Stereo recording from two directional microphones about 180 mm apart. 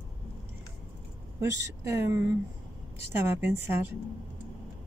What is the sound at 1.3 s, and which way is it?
Speech, 15° right (ahead or behind).